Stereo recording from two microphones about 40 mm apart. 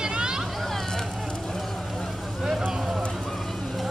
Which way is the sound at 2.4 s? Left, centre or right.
Centre.